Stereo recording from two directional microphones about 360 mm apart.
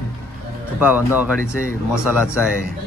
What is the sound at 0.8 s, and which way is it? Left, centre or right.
Speech, centre.